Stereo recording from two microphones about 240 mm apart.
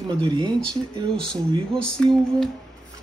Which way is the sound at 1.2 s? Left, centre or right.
Centre.